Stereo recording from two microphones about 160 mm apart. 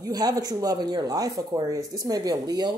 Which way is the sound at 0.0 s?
25° right (ahead or behind).